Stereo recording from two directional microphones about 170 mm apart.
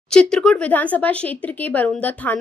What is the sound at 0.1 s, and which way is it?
Speech, 5° left (ahead or behind).